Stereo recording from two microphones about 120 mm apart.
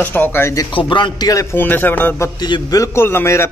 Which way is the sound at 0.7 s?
45° left (ahead or behind).